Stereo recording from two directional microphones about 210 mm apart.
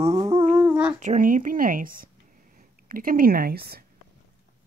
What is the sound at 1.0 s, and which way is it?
Speech, 40° right (ahead or behind).